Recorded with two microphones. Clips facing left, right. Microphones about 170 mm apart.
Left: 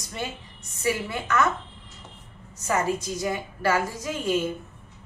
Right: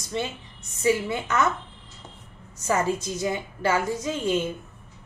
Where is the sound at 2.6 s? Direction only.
25° right (ahead or behind).